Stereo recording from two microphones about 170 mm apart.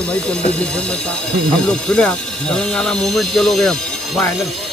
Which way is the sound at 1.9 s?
5° left (ahead or behind).